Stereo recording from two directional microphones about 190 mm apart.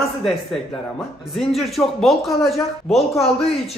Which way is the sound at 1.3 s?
Centre (ahead or behind).